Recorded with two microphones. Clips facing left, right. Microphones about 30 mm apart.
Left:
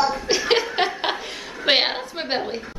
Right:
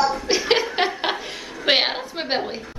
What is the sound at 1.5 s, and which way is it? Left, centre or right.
A woman's voice, centre.